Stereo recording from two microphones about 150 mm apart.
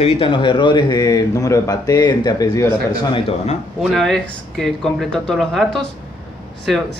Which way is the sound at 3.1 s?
45° left (ahead or behind).